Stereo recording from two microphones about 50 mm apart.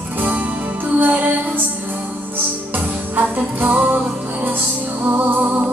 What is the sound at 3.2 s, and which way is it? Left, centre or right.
Music, right.